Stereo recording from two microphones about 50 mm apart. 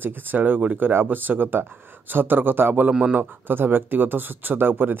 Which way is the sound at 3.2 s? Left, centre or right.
Right.